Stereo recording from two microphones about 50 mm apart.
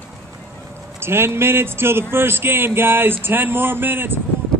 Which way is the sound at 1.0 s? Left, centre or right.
Right.